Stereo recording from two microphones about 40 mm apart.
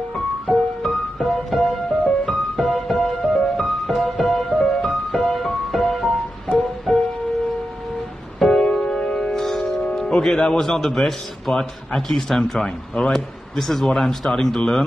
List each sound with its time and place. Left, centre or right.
0.5 s music: centre
1.6 s music: centre
2.2 s music: centre
8.4 s music: centre
9.9 s a man's voice: centre